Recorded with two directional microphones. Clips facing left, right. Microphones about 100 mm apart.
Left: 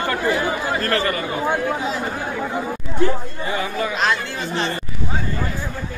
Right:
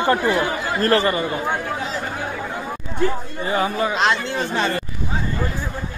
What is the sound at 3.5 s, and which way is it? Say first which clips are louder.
Speech: right 3 dB; 30° right (ahead or behind).